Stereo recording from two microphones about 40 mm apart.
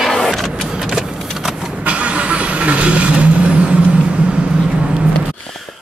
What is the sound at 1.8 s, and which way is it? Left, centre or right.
Vehicle, right.